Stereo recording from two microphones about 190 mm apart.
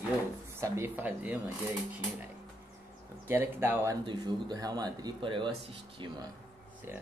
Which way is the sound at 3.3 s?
10° right (ahead or behind).